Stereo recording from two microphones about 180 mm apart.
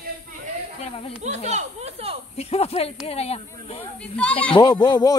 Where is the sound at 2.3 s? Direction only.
35° left (ahead or behind).